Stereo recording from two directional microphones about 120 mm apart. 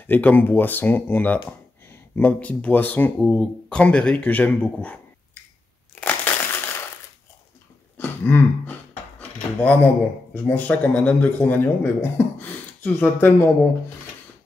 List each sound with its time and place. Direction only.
0.0 s a man's voice: 15° left (ahead or behind)
5.9 s crushing: 15° left (ahead or behind)
8.0 s throat clearing: 15° left (ahead or behind)
9.6 s a man's voice: 15° left (ahead or behind)